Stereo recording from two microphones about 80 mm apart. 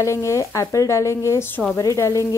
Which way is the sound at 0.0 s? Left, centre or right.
Left.